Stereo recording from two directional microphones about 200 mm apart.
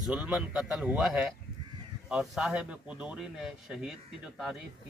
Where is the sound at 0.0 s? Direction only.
5° right (ahead or behind).